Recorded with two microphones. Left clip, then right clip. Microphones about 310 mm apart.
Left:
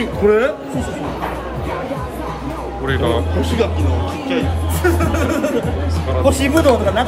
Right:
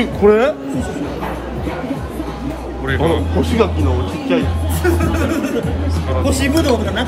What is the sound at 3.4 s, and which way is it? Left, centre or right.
Speech, centre.